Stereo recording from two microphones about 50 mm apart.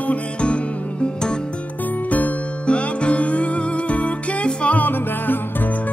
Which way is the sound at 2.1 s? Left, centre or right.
Left.